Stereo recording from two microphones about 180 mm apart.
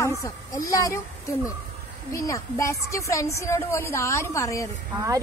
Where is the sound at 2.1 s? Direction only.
15° left (ahead or behind).